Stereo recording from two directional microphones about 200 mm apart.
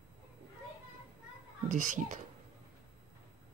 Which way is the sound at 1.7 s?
40° right (ahead or behind).